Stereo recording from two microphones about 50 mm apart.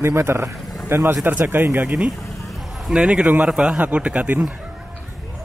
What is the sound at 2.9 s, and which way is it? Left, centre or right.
Speech, right.